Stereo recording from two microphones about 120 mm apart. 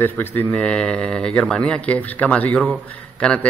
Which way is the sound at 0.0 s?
15° left (ahead or behind).